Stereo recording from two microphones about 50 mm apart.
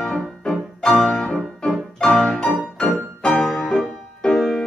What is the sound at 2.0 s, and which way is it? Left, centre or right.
Music, centre.